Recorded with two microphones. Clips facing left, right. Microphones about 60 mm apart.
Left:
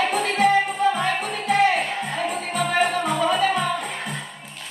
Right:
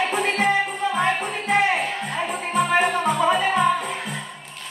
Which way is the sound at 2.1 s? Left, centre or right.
Centre.